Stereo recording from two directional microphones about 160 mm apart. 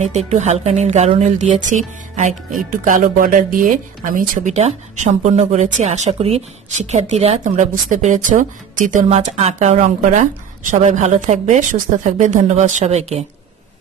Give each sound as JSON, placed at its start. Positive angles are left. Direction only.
{"t": 0.0, "sound": "speech", "side_deg": -45}
{"t": 9.1, "sound": "speech", "side_deg": -45}